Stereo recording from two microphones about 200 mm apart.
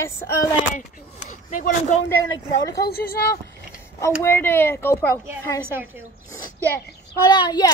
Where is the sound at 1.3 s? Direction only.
40° left (ahead or behind).